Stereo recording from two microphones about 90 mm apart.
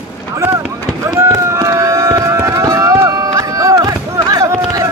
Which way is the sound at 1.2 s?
35° right (ahead or behind).